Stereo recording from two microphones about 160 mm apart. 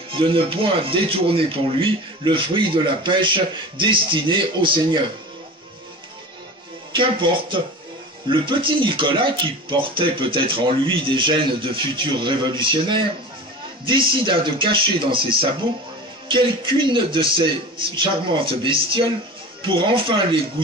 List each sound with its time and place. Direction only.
0.1 s speech: 35° right (ahead or behind)
6.9 s speech: 30° right (ahead or behind)